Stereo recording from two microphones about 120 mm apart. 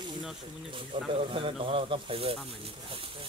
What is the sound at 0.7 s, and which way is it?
Speech, 50° right (ahead or behind).